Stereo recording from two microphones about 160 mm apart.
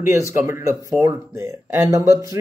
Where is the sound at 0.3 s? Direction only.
15° right (ahead or behind).